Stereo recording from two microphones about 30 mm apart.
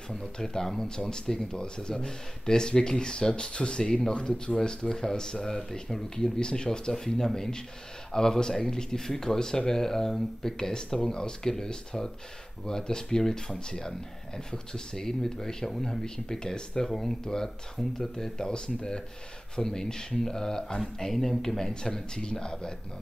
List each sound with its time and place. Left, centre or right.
0.2 s speech: left
1.5 s speech: left
6.4 s speech: left
6.9 s speech: centre
11.1 s speech: left
15.7 s speech: centre
16.0 s speech: centre
17.8 s speech: centre
18.1 s speech: centre
21.0 s speech: centre
22.1 s speech: left